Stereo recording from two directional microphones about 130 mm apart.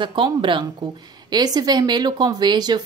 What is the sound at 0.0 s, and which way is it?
Speech, 40° right (ahead or behind).